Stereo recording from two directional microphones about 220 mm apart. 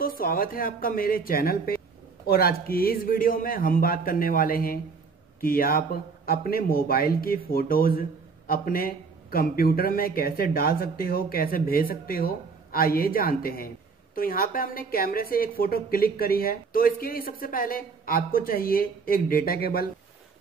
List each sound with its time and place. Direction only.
0.0 s speech: 40° left (ahead or behind)